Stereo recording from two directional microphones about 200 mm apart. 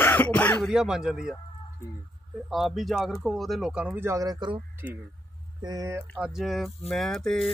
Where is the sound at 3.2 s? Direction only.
Centre (ahead or behind); by 4.5 s 20° right (ahead or behind).